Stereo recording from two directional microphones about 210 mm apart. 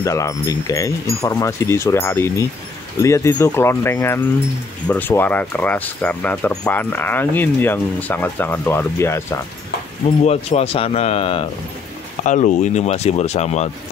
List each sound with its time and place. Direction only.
0.0 s speech: 15° left (ahead or behind)
10.2 s speech: 30° left (ahead or behind)